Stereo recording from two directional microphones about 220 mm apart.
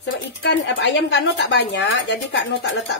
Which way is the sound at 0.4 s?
50° left (ahead or behind).